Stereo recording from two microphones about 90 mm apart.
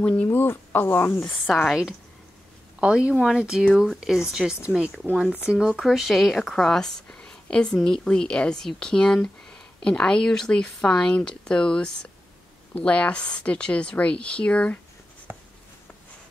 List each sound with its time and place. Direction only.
0.0 s speech: 15° left (ahead or behind)
1.5 s speech: centre (ahead or behind)
2.8 s a woman's voice: 10° right (ahead or behind); by 14.8 s 15° left (ahead or behind)